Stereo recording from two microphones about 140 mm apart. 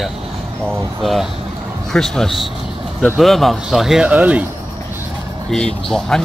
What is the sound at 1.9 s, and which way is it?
Speech, 5° left (ahead or behind).